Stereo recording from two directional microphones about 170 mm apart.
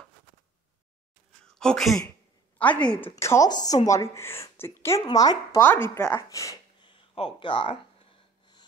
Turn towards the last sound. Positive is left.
turn(degrees=30)  # may be behind; listen again after turning